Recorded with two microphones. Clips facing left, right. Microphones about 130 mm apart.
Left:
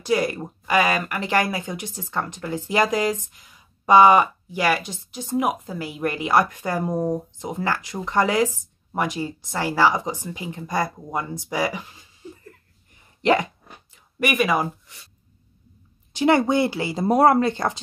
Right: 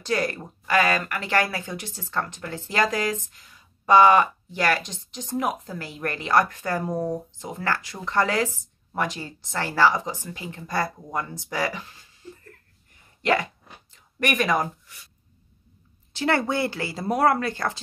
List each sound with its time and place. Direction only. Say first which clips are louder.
0.0 s speech: left 4 dB; 10° left (ahead or behind)
12.2 s laughter: left 3 dB; 15° left (ahead or behind)
13.2 s dog: left 4 dB; 20° left (ahead or behind)
14.2 s speech: left 2 dB; 5° left (ahead or behind)
16.1 s speech: left 5 dB; 15° left (ahead or behind)